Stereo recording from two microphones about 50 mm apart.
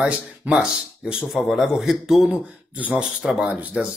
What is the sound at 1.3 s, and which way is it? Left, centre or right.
A man's voice, centre.